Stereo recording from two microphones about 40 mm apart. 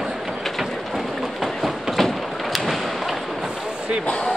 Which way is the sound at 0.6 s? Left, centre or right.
Centre.